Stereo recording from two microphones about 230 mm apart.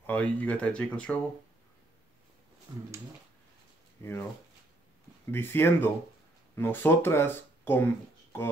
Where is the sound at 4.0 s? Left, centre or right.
Centre.